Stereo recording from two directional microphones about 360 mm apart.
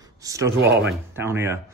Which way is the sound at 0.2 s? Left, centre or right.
Centre.